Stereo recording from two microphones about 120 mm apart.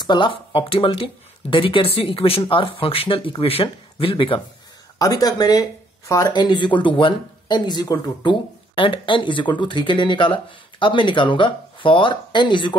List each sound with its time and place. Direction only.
0.0 s speech: 40° left (ahead or behind)
4.9 s speech: 30° left (ahead or behind)